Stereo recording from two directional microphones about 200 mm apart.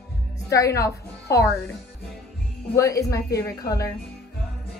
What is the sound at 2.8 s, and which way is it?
Speech, 15° left (ahead or behind).